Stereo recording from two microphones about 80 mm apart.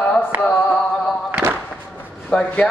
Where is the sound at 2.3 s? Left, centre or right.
Centre.